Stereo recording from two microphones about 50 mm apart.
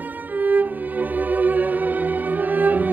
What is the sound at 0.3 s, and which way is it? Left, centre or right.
Music, right.